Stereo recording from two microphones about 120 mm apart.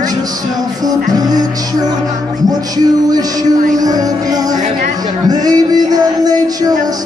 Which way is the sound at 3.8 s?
30° right (ahead or behind).